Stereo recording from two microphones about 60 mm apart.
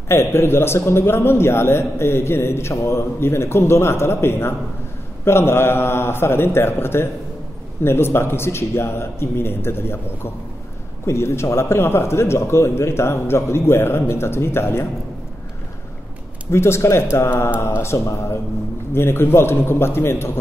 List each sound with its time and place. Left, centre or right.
0.1 s a man's voice: left
11.1 s a man's voice: left
16.4 s a man's voice: left
17.8 s mantra: left
18.9 s a man's voice: left